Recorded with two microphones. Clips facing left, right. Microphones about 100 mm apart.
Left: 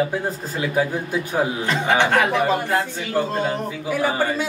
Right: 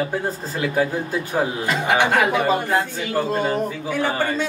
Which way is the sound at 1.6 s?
10° right (ahead or behind).